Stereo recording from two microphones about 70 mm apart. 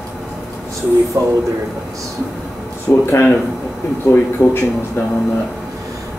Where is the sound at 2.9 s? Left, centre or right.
Left.